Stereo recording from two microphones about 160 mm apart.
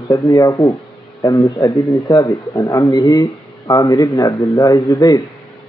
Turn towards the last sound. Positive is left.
turn(degrees=25)  # may be behind; listen again after turning